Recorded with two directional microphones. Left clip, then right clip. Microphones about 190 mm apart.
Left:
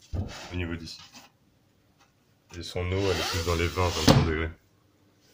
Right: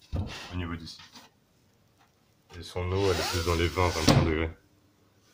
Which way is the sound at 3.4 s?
20° right (ahead or behind).